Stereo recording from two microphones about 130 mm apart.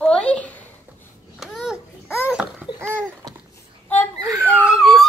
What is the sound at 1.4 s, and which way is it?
Babbling, 5° right (ahead or behind).